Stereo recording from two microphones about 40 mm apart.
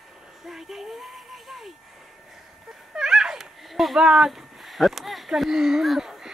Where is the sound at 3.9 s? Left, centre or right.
Centre.